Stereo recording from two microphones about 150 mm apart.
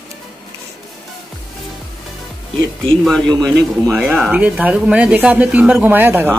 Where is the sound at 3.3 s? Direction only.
25° right (ahead or behind).